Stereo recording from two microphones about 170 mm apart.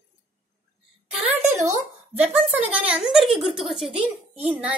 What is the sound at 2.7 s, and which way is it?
A woman's voice, 5° right (ahead or behind).